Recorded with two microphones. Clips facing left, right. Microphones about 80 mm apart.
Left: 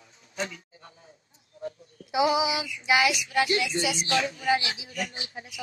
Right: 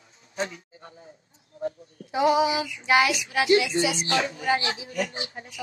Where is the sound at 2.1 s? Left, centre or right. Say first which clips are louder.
Right 3 dB; centre.